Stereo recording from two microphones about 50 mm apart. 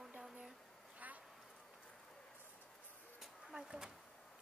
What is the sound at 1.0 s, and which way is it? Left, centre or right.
Quack, right.